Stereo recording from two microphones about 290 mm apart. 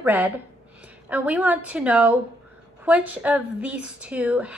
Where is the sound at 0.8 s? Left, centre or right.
Centre.